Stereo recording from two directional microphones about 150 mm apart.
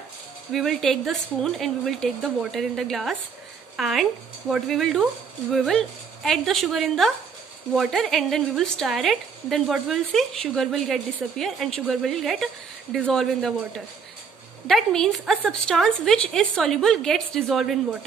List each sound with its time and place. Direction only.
0.5 s a woman's voice: centre (ahead or behind)